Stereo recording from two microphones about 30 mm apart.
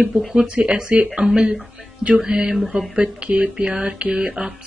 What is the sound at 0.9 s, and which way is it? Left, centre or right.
Speech, right.